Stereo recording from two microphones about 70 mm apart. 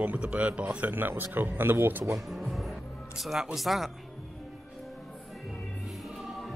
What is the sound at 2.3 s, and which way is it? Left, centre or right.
Music, centre.